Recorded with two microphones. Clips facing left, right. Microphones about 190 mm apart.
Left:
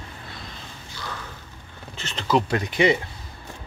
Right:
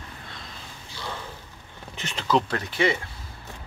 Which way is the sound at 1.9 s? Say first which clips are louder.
Even; 15° right (ahead or behind).